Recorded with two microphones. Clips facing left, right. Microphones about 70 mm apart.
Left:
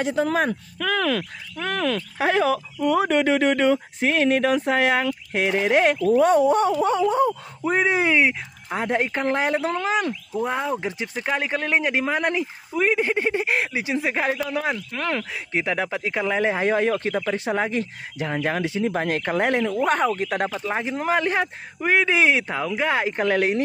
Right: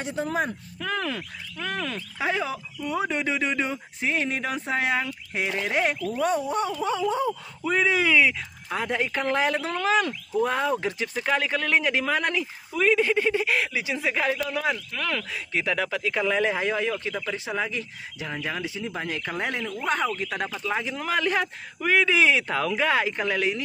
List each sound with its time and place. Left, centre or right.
0.0 s speech: left
1.6 s speech: left
6.9 s speech: left
8.3 s speech: left
10.3 s speech: centre; by 18.7 s left
18.7 s speech: left
19.6 s speech: left
20.2 s speech: left
23.2 s speech: left